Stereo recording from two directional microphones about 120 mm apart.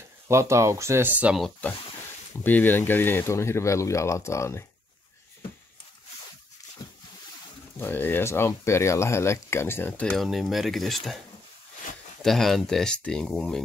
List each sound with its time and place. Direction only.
0.3 s speech: 25° right (ahead or behind)
1.6 s speech: 15° left (ahead or behind)
7.8 s speech: 15° left (ahead or behind)
10.2 s speech: centre (ahead or behind)
12.2 s speech: centre (ahead or behind)